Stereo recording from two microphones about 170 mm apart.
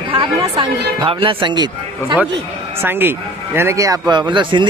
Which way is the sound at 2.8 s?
10° right (ahead or behind).